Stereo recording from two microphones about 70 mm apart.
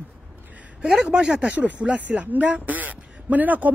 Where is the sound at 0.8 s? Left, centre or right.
Centre.